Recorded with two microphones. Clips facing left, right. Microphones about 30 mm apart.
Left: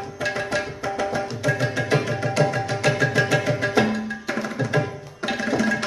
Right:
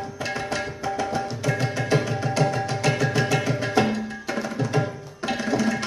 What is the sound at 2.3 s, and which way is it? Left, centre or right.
Music, centre.